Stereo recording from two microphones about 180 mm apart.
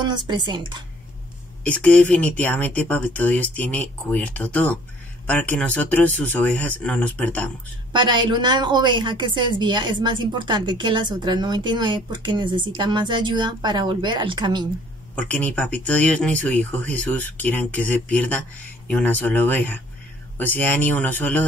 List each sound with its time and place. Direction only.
0.0 s a woman's voice: 25° right (ahead or behind)
1.6 s speech: 5° left (ahead or behind)
7.9 s a woman's voice: 25° right (ahead or behind)
15.1 s speech: 10° left (ahead or behind)